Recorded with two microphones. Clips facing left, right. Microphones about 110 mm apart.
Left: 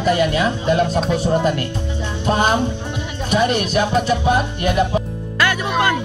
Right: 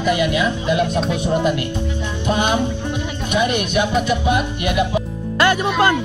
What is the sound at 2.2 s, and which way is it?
Music, 35° left (ahead or behind).